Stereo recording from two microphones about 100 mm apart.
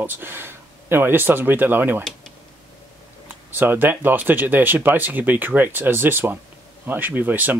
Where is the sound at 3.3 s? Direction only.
20° right (ahead or behind).